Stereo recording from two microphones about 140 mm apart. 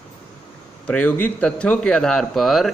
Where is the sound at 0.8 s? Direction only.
10° left (ahead or behind).